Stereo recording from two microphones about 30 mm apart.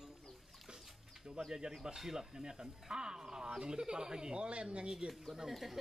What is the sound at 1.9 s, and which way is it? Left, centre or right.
Speech, centre.